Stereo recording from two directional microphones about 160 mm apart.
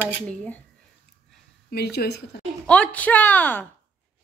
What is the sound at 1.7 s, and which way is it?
Speech, 80° left.